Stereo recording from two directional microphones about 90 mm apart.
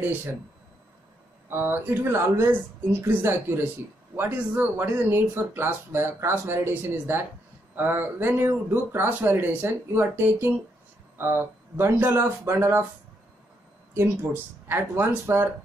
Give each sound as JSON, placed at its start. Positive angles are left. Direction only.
{"t": 1.5, "sound": "speech", "side_deg": -25}
{"t": 13.9, "sound": "speech", "side_deg": -25}